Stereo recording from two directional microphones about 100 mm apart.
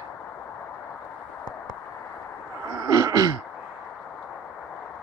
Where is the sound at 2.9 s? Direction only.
35° right (ahead or behind).